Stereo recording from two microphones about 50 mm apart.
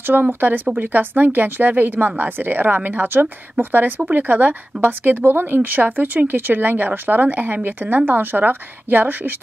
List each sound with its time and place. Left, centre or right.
0.0 s speech: right